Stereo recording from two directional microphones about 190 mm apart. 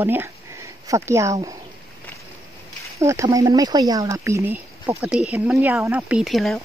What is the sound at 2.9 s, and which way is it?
Speech, 15° right (ahead or behind).